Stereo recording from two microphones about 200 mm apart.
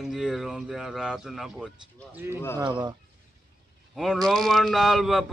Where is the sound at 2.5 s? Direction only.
20° right (ahead or behind).